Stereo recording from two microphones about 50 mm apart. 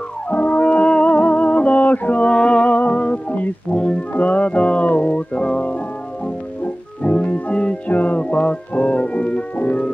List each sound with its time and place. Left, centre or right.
0.3 s music: left; by 4.0 s centre
4.1 s music: left
7.0 s music: left